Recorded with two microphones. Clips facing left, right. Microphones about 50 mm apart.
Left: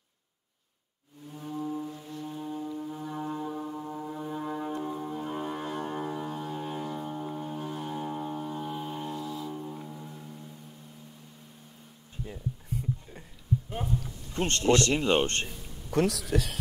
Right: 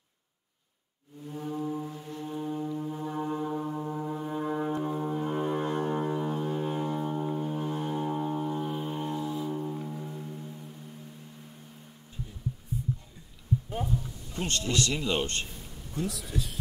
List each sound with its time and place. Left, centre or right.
1.3 s foghorn: centre
2.2 s music: centre
14.3 s speech: left
15.9 s speech: left